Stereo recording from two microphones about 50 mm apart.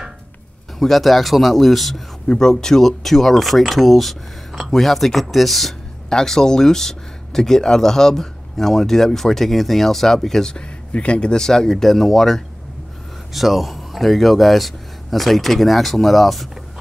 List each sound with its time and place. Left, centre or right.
0.7 s speech: centre
10.5 s speech: left; by 16.4 s centre